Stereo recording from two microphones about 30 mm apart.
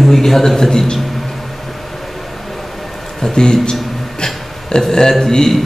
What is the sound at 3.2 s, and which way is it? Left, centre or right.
Speech, left.